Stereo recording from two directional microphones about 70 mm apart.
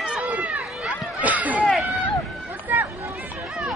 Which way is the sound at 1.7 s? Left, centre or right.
Centre.